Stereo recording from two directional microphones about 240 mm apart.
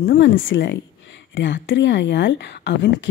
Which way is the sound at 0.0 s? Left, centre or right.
Left.